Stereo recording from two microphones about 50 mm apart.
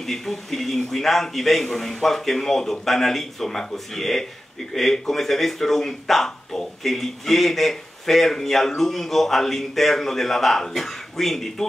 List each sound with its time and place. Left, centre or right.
0.0 s speech: centre